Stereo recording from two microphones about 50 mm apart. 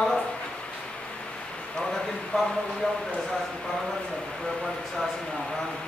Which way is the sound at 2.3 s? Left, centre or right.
Centre.